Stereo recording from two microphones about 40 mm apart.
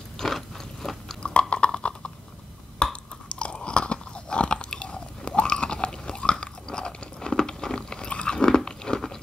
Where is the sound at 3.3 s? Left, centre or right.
Left.